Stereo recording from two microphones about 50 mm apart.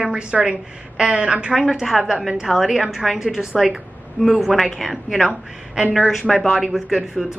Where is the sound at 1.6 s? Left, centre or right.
Centre.